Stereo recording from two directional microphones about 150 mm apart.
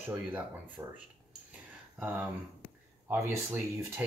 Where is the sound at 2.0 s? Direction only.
10° right (ahead or behind).